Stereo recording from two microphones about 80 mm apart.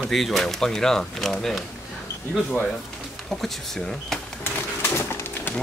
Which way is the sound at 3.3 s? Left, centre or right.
Centre.